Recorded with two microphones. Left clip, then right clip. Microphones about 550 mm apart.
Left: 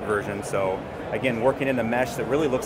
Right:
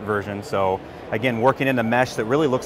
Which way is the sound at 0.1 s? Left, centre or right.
Right.